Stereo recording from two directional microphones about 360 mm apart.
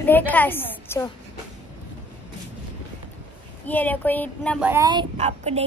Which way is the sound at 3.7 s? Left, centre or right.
Centre.